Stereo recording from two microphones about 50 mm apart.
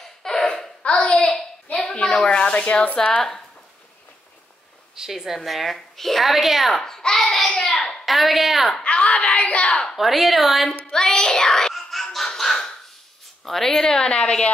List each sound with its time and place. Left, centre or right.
0.0 s laughter: centre
0.6 s hands: left
2.2 s speech: left
4.9 s speech: centre
6.8 s a child's voice: centre
7.7 s a sound: centre
8.0 s a woman's voice: centre
8.8 s a woman's voice: left
9.9 s speech: centre
10.7 s a sound: centre
13.4 s a woman's voice: centre